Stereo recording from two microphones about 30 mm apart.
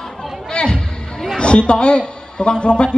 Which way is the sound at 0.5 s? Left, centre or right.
Left.